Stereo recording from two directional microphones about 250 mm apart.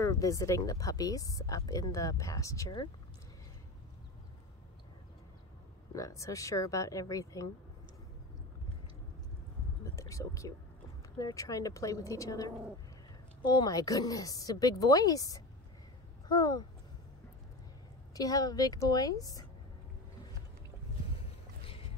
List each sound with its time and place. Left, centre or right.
0.0 s speech: centre
5.9 s speech: centre
9.8 s speech: centre
18.1 s speech: centre